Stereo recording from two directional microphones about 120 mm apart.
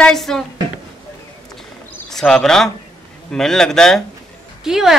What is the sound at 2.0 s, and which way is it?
A woman's voice, 5° left (ahead or behind).